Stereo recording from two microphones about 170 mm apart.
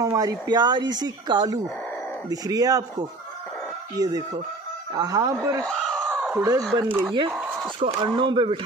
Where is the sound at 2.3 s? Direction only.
20° right (ahead or behind).